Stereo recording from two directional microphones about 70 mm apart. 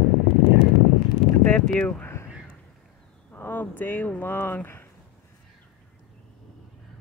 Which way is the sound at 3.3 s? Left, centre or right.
Left.